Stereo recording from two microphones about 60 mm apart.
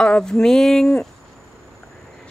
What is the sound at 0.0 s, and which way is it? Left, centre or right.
Speech, centre.